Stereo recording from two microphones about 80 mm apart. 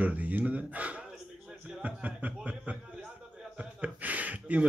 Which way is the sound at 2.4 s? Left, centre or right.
Centre.